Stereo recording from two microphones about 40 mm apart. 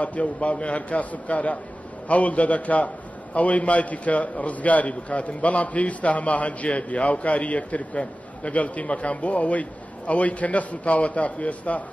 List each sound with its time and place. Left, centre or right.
0.0 s a man's voice: left